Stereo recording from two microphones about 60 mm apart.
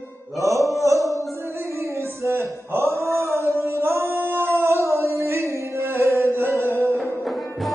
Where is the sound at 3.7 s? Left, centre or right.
Right.